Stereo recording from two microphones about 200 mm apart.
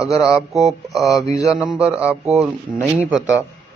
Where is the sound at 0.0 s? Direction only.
15° left (ahead or behind).